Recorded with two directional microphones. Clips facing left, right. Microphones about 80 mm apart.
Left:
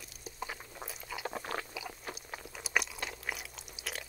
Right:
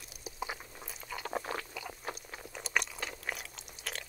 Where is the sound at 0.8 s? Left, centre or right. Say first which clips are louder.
Left 1 dB; centre.